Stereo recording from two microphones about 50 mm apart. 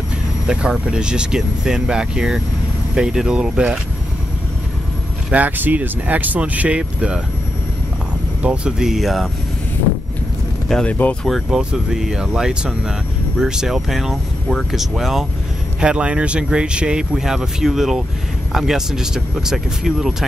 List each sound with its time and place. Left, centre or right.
0.5 s speech: centre
5.3 s speech: right
6.8 s speech: centre
8.4 s speech: centre
9.0 s speech: centre
10.9 s speech: left
11.5 s speech: centre
15.8 s speech: right
17.1 s speech: centre